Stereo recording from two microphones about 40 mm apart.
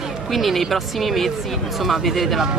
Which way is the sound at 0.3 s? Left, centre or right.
Centre.